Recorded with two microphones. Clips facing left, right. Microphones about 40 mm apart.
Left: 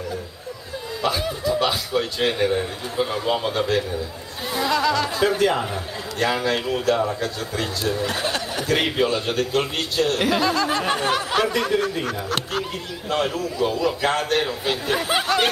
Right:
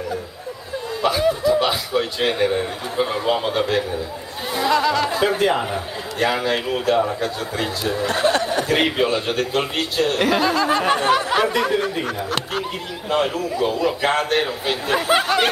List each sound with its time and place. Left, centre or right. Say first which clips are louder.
1.0 s laughter: right 6 dB; centre
1.5 s a man's voice: right 3 dB; centre
8.1 s speech: right 6 dB; right
8.6 s a man's voice: right 2 dB; centre